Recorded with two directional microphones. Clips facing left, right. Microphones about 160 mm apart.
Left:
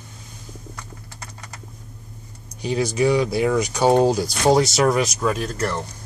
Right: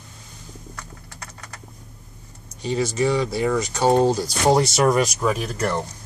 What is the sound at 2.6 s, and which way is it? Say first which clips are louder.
Speech: left 2 dB; 10° left (ahead or behind).